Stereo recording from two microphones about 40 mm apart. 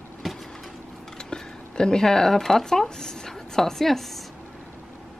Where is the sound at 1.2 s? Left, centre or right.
Centre.